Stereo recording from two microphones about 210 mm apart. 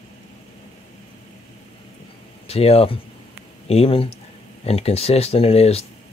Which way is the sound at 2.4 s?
30° left (ahead or behind).